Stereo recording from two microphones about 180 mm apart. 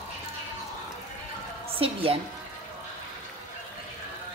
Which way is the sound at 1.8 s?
30° right (ahead or behind).